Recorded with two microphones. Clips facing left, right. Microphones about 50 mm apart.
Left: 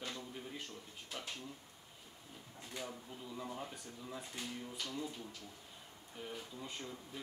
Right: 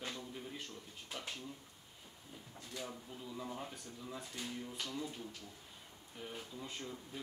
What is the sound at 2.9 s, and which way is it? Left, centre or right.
Speech, centre.